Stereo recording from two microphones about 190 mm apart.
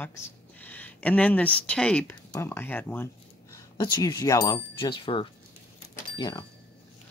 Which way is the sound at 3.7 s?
20° left (ahead or behind).